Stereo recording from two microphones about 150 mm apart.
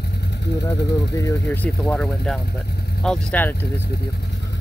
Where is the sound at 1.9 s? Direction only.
5° left (ahead or behind).